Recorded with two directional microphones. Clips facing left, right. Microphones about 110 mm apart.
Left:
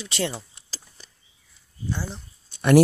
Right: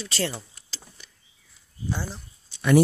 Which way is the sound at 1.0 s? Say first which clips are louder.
Left 1 dB; 35° left (ahead or behind).